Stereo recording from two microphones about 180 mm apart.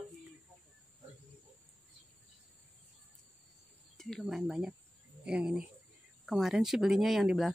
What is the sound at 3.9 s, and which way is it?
Speech, centre (ahead or behind).